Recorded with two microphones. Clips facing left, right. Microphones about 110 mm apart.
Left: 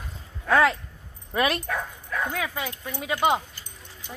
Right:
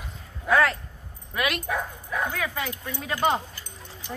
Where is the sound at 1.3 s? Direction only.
30° left (ahead or behind).